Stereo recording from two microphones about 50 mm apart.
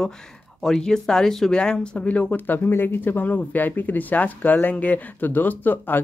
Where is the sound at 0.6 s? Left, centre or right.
Centre.